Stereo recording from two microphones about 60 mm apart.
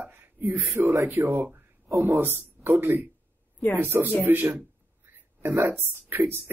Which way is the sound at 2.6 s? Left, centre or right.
Right.